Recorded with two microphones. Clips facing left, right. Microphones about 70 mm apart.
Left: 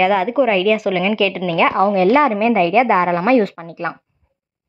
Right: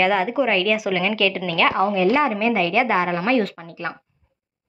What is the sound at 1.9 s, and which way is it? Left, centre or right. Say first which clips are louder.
Speech: left 5 dB; left.